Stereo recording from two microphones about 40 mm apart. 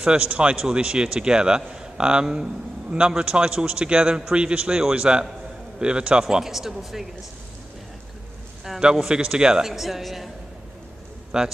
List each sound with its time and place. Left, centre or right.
0.2 s a man's voice: right
6.4 s speech: centre
9.1 s speech: right; by 10.3 s centre
11.3 s speech: centre